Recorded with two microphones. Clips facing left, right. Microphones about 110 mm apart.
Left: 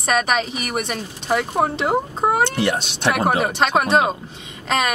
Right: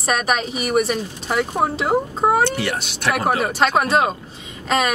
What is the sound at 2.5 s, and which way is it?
Speech, 20° left (ahead or behind).